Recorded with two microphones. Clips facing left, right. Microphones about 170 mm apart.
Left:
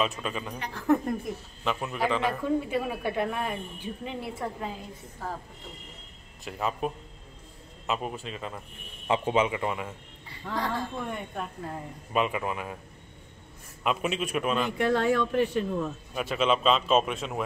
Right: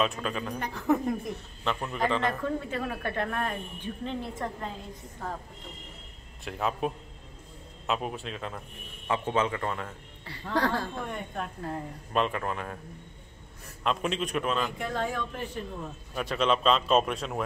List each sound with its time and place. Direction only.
0.0 s a man's voice: centre (ahead or behind)
6.4 s a man's voice: centre (ahead or behind)
9.0 s a man's voice: 15° left (ahead or behind)
13.8 s speech: 5° left (ahead or behind)
14.8 s speech: 75° left (ahead or behind)
16.2 s a man's voice: 5° left (ahead or behind)